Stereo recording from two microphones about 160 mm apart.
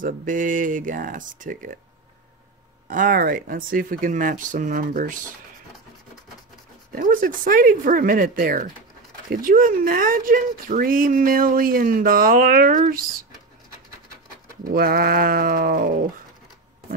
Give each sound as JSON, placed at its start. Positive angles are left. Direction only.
{"t": 0.0, "sound": "speech", "side_deg": -55}
{"t": 2.9, "sound": "speech", "side_deg": -60}
{"t": 7.0, "sound": "speech", "side_deg": -60}
{"t": 14.7, "sound": "speech", "side_deg": -70}